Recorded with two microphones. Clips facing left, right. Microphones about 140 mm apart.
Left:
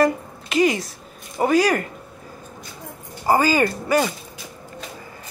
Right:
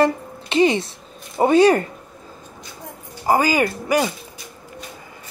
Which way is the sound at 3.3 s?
10° right (ahead or behind).